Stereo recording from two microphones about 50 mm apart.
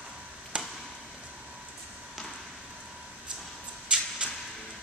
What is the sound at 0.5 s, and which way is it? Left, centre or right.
Chop, centre.